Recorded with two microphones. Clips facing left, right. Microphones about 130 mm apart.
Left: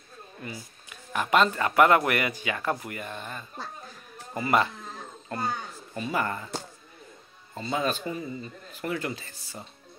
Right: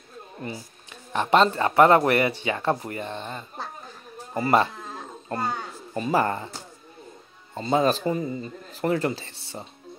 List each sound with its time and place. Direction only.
1.1 s a man's voice: 30° right (ahead or behind)
7.5 s a man's voice: 35° right (ahead or behind)